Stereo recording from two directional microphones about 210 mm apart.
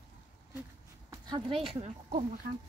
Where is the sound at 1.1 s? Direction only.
20° right (ahead or behind).